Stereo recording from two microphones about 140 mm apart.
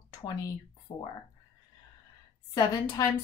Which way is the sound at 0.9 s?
35° left (ahead or behind).